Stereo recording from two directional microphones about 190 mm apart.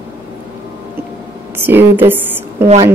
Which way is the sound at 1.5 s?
10° right (ahead or behind).